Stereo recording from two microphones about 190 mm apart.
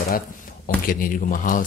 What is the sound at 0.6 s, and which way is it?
Speech, 45° left (ahead or behind).